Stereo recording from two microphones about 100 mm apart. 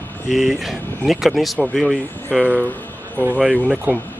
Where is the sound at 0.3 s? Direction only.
Centre (ahead or behind).